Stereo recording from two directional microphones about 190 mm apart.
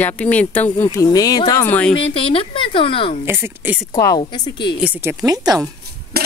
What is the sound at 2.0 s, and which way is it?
A woman's voice, 30° left (ahead or behind).